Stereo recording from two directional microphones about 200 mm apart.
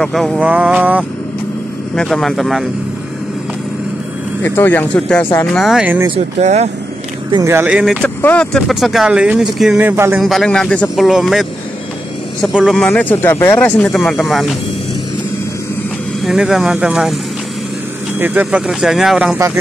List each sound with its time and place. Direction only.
0.0 s vehicle: centre (ahead or behind)
2.0 s speech: centre (ahead or behind)
4.4 s speech: 10° left (ahead or behind)
5.6 s speech: 5° right (ahead or behind)
6.0 s speech: 30° right (ahead or behind)
7.2 s vehicle: 15° right (ahead or behind)
8.0 s speech: 5° left (ahead or behind); by 10.2 s 10° right (ahead or behind)
10.2 s speech: centre (ahead or behind)
16.3 s speech: centre (ahead or behind)
18.2 s speech: 5° right (ahead or behind)
19.3 s vehicle: 15° right (ahead or behind)